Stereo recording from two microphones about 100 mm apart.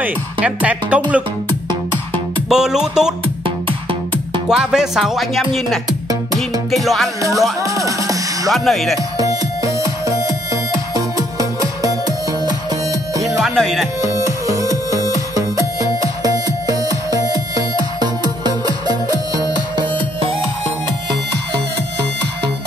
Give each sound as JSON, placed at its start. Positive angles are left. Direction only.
{"t": 0.0, "sound": "speech", "side_deg": -15}
{"t": 2.5, "sound": "speech", "side_deg": -5}
{"t": 4.5, "sound": "speech", "side_deg": -5}
{"t": 7.2, "sound": "music", "side_deg": -30}
{"t": 8.5, "sound": "speech", "side_deg": 0}
{"t": 9.2, "sound": "music", "side_deg": -35}
{"t": 13.1, "sound": "music", "side_deg": -35}
{"t": 13.4, "sound": "speech", "side_deg": 0}
{"t": 14.0, "sound": "music", "side_deg": -35}